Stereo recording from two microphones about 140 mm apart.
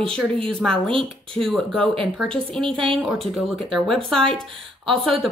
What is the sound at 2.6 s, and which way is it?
Speech, 40° right (ahead or behind).